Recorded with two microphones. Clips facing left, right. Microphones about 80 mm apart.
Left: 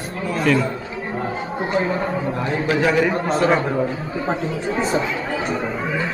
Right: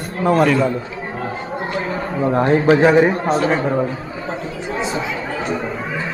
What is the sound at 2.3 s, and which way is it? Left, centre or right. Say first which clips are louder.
Speech: right 11 dB; right.